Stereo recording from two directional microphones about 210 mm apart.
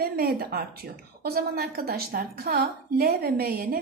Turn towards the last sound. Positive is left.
turn(degrees=-45)  # may be behind; listen again after turning